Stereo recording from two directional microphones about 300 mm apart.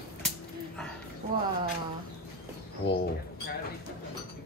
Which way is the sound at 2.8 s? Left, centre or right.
Left.